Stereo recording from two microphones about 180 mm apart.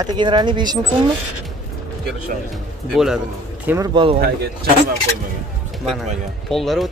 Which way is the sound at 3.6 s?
15° right (ahead or behind).